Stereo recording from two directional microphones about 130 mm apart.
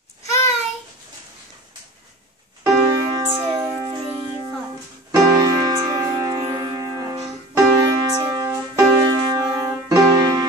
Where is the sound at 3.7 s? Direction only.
40° right (ahead or behind).